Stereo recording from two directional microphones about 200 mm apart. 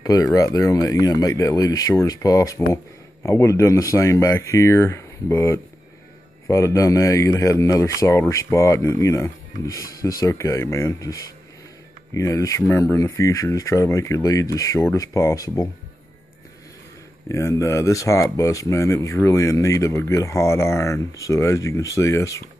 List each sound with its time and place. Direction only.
0.0 s speech: 20° left (ahead or behind)
17.3 s speech: 15° left (ahead or behind)